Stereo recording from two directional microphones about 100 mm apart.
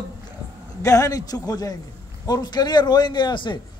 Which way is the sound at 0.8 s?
35° left (ahead or behind).